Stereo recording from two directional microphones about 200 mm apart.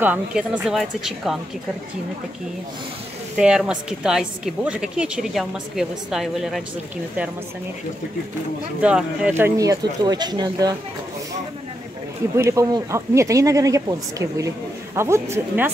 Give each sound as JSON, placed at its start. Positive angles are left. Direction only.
{"t": 0.0, "sound": "a woman's voice", "side_deg": -5}
{"t": 3.3, "sound": "a woman's voice", "side_deg": -5}
{"t": 8.8, "sound": "a woman's voice", "side_deg": -5}
{"t": 9.4, "sound": "speech", "side_deg": -15}
{"t": 12.4, "sound": "speech", "side_deg": -15}